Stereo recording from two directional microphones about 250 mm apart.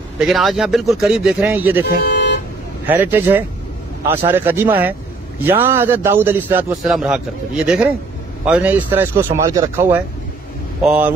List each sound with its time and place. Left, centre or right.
0.2 s speech: centre
2.0 s vehicle: left
2.9 s a man's voice: centre